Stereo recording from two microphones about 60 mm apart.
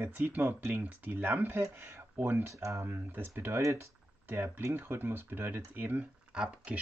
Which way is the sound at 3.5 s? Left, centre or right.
Right.